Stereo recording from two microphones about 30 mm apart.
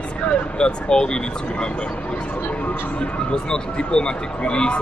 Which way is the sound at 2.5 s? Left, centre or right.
Left.